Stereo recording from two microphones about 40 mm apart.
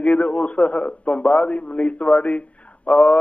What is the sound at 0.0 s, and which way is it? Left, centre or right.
A man's voice, left.